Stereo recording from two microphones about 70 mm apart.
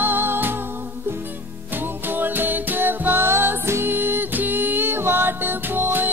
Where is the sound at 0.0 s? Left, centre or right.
Right.